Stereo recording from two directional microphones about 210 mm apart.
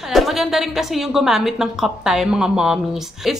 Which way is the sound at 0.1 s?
Centre (ahead or behind).